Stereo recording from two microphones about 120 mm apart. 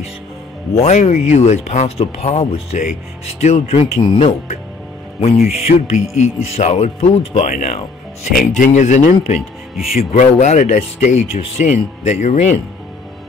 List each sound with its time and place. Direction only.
0.7 s speech: 65° left (ahead or behind)